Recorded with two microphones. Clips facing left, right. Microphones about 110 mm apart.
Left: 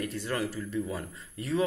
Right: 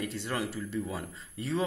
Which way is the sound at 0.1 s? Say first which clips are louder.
Left 2 dB; 25° right (ahead or behind).